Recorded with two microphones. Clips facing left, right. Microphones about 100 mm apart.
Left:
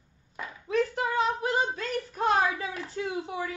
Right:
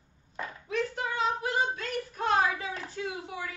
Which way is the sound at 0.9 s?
35° left (ahead or behind).